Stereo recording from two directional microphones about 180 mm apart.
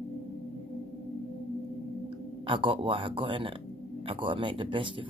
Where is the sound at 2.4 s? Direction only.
30° right (ahead or behind).